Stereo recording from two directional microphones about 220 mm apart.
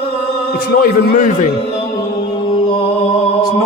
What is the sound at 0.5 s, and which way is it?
Speech, 40° left (ahead or behind).